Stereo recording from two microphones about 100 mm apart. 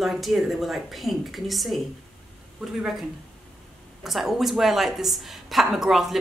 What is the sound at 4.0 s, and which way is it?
A woman's voice, 5° right (ahead or behind).